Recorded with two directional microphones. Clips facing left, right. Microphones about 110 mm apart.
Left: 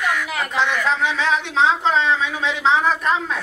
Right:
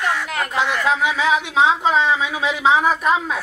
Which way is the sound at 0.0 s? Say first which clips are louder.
Even; 30° right (ahead or behind).